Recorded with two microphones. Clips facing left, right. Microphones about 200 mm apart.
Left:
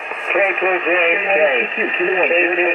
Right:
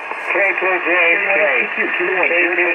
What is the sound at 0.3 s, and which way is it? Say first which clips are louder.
Speech: left 1 dB; 40° left (ahead or behind).